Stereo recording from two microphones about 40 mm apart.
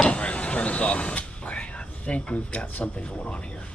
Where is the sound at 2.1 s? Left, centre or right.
Left.